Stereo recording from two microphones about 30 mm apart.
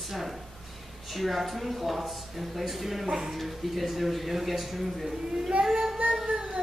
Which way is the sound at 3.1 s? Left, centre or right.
Centre.